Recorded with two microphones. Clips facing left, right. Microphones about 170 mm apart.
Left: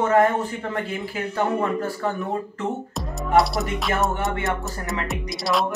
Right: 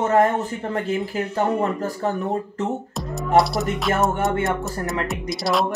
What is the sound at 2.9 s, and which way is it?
Speech, centre (ahead or behind).